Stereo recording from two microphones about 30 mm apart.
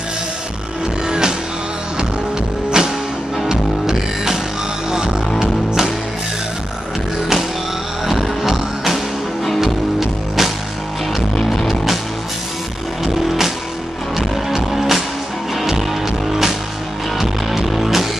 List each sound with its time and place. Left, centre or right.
1.0 s music: right
2.8 s music: right
3.9 s music: centre
8.1 s music: centre
13.0 s music: centre